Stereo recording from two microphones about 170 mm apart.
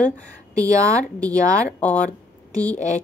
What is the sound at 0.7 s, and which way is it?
Speech, 20° right (ahead or behind).